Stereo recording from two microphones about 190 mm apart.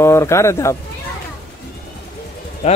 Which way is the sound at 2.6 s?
35° left (ahead or behind).